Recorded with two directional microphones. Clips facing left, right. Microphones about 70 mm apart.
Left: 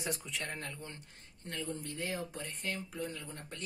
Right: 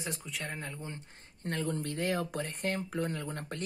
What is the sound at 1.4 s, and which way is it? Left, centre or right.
Speech, right.